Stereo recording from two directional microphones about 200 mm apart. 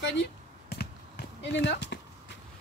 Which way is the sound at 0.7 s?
55° left (ahead or behind).